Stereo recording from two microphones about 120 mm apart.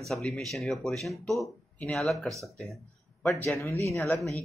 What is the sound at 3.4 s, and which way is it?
Speech, 20° left (ahead or behind).